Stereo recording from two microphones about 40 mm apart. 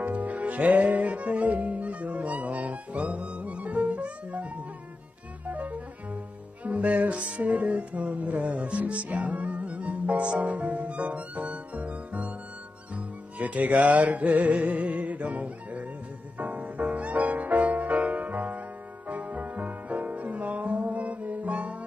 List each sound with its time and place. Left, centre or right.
0.0 s music: right
5.4 s cello: right
10.4 s music: right